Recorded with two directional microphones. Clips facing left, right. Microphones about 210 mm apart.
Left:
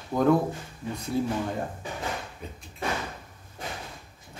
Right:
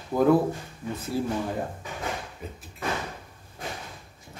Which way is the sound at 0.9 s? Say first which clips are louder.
Even; 5° right (ahead or behind).